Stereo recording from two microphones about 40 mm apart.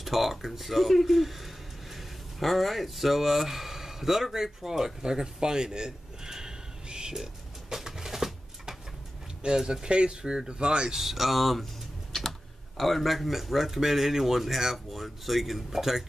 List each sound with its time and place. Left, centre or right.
0.0 s speech: centre
7.7 s a sound: centre
9.4 s speech: right
11.0 s speech: centre